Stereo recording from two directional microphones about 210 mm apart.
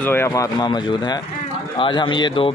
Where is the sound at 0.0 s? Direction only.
10° left (ahead or behind).